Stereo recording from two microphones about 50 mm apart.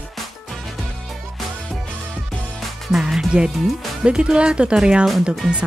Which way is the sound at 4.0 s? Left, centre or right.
Centre.